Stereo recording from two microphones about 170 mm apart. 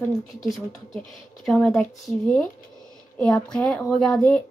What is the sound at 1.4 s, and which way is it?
Speech, 5° left (ahead or behind).